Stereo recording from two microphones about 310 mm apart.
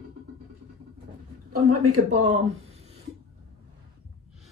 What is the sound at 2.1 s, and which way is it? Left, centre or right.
Speech, right.